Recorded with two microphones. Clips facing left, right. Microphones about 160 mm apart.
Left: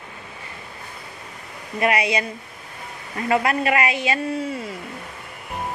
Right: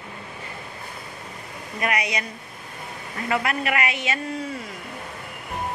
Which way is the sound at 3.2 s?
30° left (ahead or behind).